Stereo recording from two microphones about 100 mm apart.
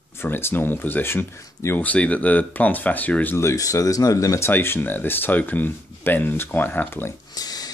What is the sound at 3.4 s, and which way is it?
Speech, 30° left (ahead or behind).